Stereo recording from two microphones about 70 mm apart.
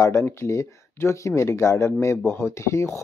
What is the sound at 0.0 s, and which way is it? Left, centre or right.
Speech, left.